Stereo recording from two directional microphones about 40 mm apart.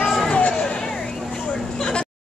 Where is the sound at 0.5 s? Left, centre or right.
Left.